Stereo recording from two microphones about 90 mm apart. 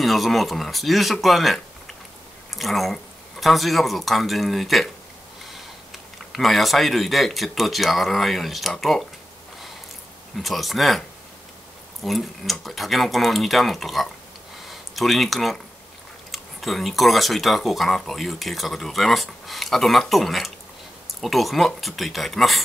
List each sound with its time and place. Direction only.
0.0 s speech: centre (ahead or behind)
10.3 s speech: centre (ahead or behind)